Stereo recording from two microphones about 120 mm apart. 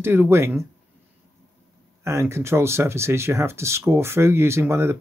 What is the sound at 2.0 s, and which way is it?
Speech, 25° right (ahead or behind).